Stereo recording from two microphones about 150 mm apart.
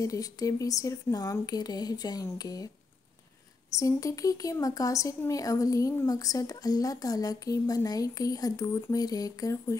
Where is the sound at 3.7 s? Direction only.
20° left (ahead or behind).